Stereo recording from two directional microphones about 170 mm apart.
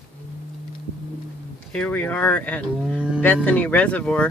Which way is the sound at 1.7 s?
10° left (ahead or behind).